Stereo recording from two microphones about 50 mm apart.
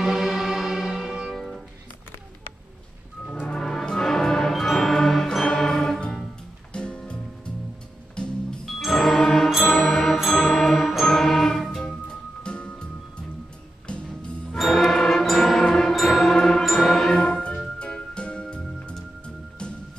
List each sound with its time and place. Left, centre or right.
0.0 s music: centre
3.4 s music: centre
8.6 s music: centre; by 12.8 s left
14.6 s music: centre